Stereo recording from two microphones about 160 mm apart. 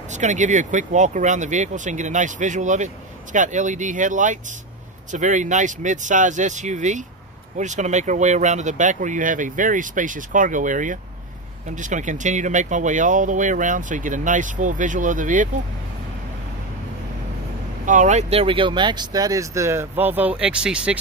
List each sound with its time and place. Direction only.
0.1 s speech: 50° right (ahead or behind)
17.8 s speech: 50° right (ahead or behind); by 21.0 s 5° right (ahead or behind)